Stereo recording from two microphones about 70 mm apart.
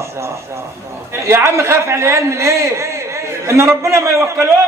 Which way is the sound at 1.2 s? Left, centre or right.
Right.